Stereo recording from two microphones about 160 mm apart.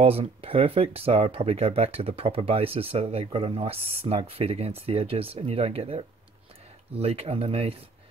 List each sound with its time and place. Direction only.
0.0 s speech: 40° right (ahead or behind)